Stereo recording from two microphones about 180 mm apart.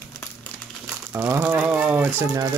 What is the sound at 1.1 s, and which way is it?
Speech, 10° right (ahead or behind).